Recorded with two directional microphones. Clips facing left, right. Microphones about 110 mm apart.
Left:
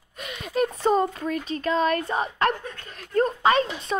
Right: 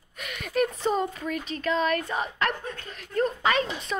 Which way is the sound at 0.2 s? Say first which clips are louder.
Left 1 dB; 25° left (ahead or behind).